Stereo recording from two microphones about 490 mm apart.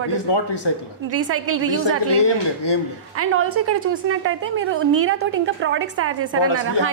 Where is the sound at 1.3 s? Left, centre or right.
Right.